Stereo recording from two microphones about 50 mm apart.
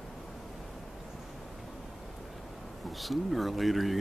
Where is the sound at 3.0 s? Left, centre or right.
Centre.